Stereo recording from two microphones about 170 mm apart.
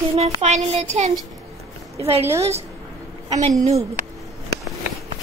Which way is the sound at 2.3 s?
40° right (ahead or behind).